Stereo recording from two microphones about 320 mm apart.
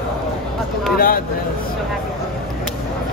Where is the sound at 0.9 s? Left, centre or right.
Left.